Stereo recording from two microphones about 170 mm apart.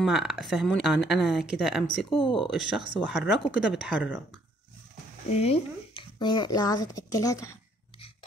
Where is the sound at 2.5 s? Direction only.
Centre (ahead or behind).